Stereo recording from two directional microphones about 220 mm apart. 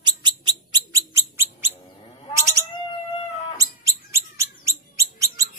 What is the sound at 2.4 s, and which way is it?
Cat, 15° right (ahead or behind).